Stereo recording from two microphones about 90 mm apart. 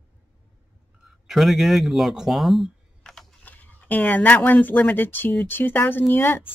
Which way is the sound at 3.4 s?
20° left (ahead or behind).